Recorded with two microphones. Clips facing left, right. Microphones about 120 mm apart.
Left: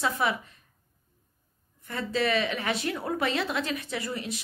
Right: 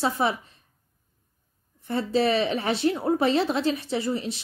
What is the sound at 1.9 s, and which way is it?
Speech, 30° right (ahead or behind).